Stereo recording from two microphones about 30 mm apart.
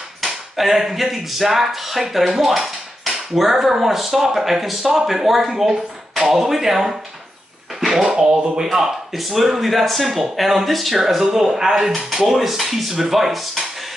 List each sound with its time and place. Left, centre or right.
0.6 s speech: centre
7.8 s a sound: centre
8.1 s speech: right
9.2 s speech: centre
11.0 s speech: centre